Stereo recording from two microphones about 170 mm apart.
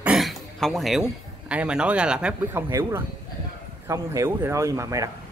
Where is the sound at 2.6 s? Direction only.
20° right (ahead or behind).